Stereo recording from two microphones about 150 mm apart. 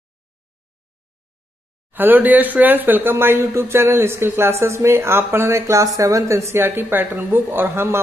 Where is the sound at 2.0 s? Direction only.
10° right (ahead or behind).